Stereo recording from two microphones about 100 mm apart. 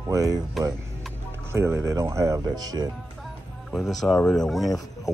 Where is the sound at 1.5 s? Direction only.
25° right (ahead or behind); by 2.9 s 40° right (ahead or behind).